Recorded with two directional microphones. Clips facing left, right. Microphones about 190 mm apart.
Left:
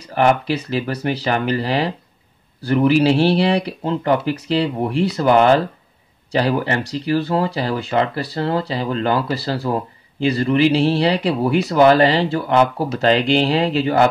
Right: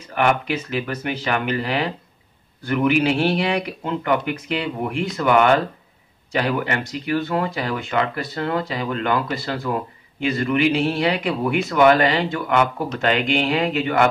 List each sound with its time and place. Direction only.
0.0 s speech: 35° left (ahead or behind)